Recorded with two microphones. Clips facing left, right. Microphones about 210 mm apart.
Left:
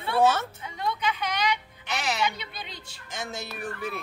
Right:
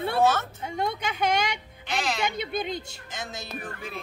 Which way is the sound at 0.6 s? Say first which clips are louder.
Right 1 dB; 45° right (ahead or behind).